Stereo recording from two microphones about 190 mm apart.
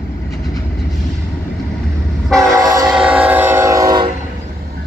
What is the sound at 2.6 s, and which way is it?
Train, 20° right (ahead or behind).